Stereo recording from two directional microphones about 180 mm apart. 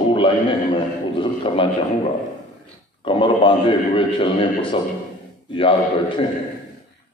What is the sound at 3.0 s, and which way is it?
A man's voice, 30° left (ahead or behind).